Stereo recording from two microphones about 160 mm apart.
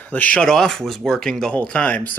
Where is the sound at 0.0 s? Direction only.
10° left (ahead or behind).